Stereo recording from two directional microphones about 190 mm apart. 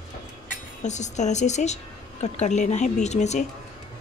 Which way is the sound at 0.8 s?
40° left (ahead or behind).